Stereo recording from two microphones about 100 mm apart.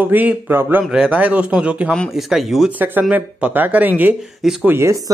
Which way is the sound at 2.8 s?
15° right (ahead or behind).